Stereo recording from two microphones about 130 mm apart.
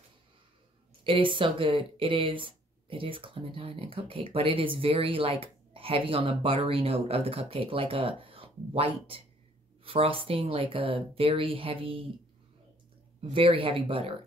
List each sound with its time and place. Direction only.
1.0 s speech: 40° right (ahead or behind)
13.3 s speech: 45° right (ahead or behind)